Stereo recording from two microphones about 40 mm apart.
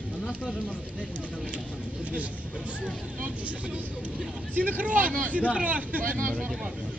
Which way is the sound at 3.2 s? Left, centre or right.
Right.